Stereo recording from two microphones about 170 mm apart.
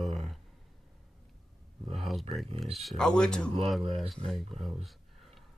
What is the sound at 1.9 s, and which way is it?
Speech, centre (ahead or behind).